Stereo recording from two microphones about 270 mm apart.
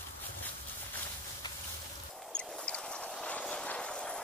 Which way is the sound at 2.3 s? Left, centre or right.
Centre.